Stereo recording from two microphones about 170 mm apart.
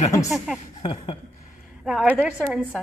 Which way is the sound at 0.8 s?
30° left (ahead or behind).